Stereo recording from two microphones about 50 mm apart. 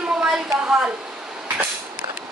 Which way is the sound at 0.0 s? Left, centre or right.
Centre.